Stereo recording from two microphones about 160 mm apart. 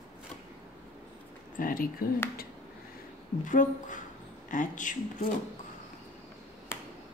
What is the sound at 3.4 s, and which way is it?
Speech, 55° left (ahead or behind).